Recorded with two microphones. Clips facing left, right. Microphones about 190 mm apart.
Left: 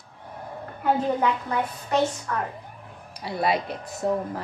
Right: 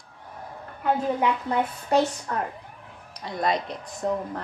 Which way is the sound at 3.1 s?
5° left (ahead or behind).